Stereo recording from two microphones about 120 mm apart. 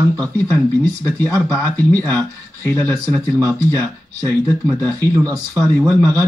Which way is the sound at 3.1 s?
30° right (ahead or behind).